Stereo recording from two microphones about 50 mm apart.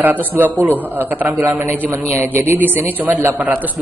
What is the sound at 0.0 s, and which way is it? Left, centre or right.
A woman's voice, right.